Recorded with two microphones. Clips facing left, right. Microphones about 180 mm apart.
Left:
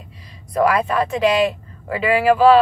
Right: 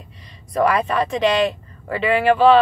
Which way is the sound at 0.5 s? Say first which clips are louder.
Left 1 dB; centre (ahead or behind).